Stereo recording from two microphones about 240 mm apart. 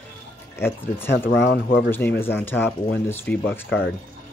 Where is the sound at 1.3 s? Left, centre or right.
Left.